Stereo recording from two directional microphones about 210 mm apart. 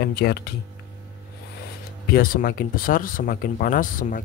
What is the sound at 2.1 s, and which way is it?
Speech, 45° left (ahead or behind).